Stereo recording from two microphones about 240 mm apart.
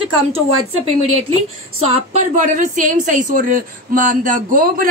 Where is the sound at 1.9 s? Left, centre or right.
Right.